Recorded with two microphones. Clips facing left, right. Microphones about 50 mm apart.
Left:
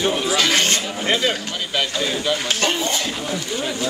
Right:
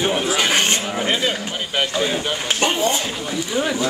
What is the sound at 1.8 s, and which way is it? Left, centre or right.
Speech, right.